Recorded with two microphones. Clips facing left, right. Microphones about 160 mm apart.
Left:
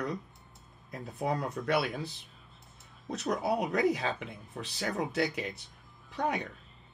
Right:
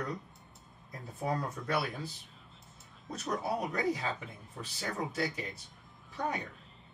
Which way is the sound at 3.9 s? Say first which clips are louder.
Left 3 dB; 70° left (ahead or behind).